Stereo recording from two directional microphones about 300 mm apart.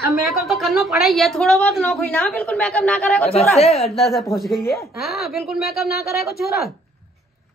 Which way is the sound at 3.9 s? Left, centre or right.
Centre.